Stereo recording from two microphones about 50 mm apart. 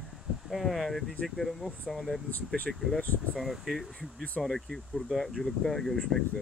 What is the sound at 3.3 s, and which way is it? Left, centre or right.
Speech, centre.